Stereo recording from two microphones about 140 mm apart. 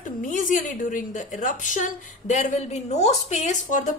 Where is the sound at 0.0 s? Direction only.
70° left (ahead or behind).